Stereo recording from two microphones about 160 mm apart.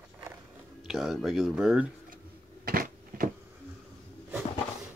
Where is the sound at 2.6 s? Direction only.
65° right (ahead or behind).